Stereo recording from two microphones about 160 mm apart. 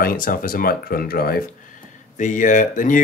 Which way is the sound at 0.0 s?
65° left (ahead or behind).